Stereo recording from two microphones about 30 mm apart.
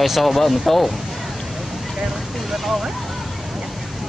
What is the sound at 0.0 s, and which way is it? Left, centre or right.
Speech, centre.